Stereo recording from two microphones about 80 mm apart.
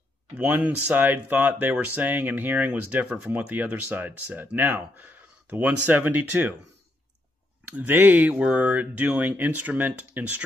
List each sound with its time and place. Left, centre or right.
0.3 s speech: centre
7.6 s speech: right